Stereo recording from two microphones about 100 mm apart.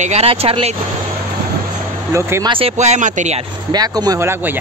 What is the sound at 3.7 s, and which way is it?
Speech, 40° right (ahead or behind).